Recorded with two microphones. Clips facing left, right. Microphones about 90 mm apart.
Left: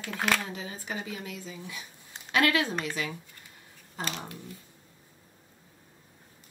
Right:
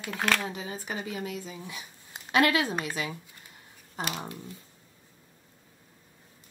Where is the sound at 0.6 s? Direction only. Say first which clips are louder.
Right 1 dB; 20° right (ahead or behind).